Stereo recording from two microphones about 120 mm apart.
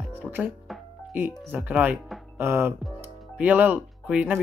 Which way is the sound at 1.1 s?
15° right (ahead or behind).